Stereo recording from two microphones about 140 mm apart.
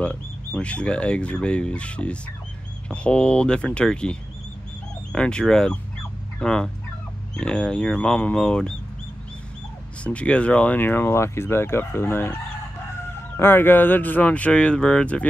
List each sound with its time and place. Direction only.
0.0 s speech: 10° left (ahead or behind)
10.0 s speech: 10° left (ahead or behind)
13.4 s speech: 15° left (ahead or behind)